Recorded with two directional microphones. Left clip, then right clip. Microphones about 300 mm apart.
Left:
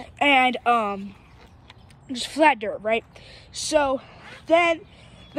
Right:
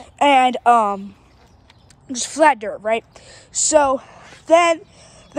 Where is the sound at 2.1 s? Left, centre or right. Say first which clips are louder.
Right 4 dB; centre.